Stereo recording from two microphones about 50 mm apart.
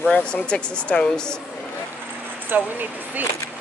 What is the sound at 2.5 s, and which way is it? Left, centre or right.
Speech, right.